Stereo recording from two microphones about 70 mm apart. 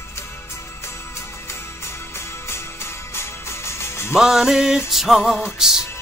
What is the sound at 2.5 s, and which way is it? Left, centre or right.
Music, left.